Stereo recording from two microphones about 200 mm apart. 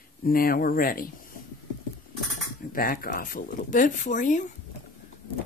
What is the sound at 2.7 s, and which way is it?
Speech, 45° left (ahead or behind).